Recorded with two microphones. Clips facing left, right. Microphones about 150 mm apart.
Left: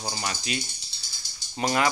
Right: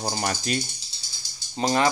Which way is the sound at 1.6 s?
30° right (ahead or behind).